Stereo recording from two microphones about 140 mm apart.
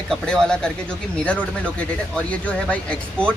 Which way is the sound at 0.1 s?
5° left (ahead or behind).